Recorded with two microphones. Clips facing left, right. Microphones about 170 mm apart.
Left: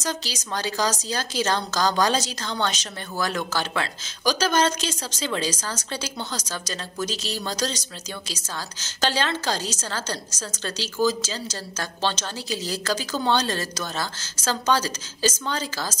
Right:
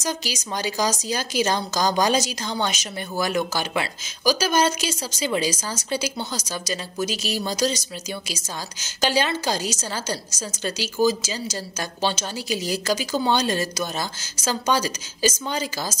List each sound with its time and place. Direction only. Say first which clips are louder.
0.0 s a woman's voice: right 2 dB; 10° right (ahead or behind)